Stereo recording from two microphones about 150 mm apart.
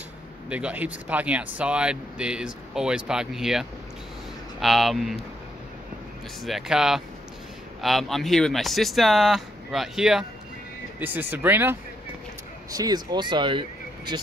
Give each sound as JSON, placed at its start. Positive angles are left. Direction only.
{"t": 0.5, "sound": "speech", "side_deg": -10}
{"t": 6.4, "sound": "speech", "side_deg": 0}
{"t": 12.7, "sound": "speech", "side_deg": -25}